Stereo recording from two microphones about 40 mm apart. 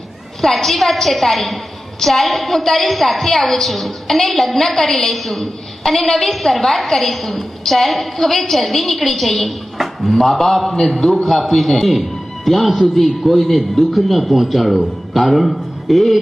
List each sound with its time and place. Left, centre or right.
0.4 s a woman's voice: centre
11.0 s a man's voice: centre